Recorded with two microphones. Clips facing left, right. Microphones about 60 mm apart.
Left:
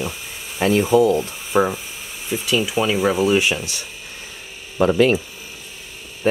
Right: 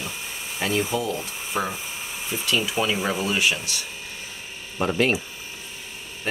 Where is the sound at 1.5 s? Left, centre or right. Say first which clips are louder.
Left 9 dB; left.